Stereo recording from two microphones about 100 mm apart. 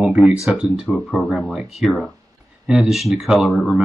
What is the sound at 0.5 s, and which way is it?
Speech, 10° right (ahead or behind).